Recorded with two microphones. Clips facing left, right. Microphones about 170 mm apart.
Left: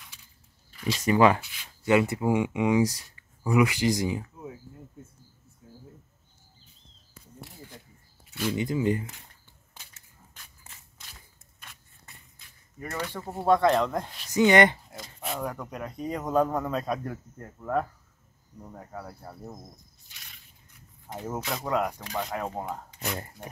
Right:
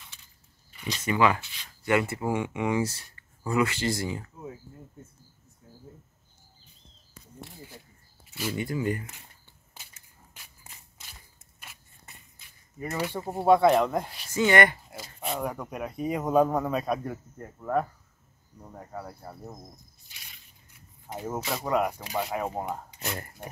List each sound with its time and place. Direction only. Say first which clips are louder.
0.9 s speech: left 4 dB; 35° left (ahead or behind)
1.4 s speech: left 4 dB; 15° left (ahead or behind)
8.3 s a sound: left 3 dB; 5° right (ahead or behind)
8.5 s speech: left 3 dB; 20° left (ahead or behind)
10.3 s a sound: right 1 dB; 10° right (ahead or behind)
12.7 s speech: right 3 dB; 15° right (ahead or behind)
14.3 s speech: left 3 dB; 20° left (ahead or behind)
14.9 s speech: right 2 dB; 5° right (ahead or behind)
21.1 s speech: right 1 dB; 5° right (ahead or behind)